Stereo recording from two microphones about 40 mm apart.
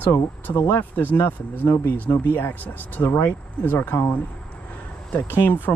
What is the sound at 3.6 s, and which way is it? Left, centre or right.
Speech, left.